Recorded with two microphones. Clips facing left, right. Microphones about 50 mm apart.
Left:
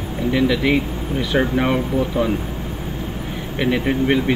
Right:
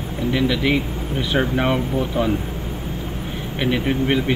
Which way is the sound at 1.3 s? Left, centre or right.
Centre.